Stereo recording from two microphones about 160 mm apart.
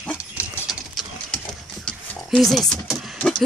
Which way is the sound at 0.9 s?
Centre (ahead or behind).